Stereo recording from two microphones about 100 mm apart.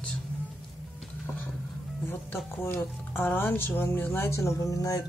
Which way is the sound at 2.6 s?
20° left (ahead or behind).